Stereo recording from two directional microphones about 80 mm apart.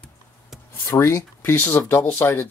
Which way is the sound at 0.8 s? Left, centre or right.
Left.